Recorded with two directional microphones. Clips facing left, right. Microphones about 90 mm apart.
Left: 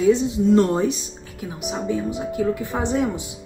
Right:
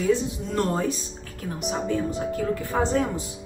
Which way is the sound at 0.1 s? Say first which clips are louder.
Left 7 dB; 20° left (ahead or behind).